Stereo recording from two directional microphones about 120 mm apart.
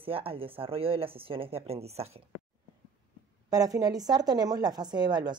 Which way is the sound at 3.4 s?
30° right (ahead or behind).